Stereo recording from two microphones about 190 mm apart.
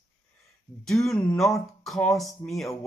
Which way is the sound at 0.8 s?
Centre (ahead or behind).